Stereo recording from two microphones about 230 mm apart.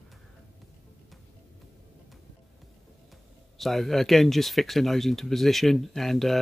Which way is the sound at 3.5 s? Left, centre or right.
Centre.